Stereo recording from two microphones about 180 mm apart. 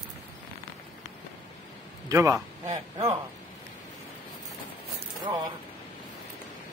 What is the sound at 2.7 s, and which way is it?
Speech, 30° right (ahead or behind).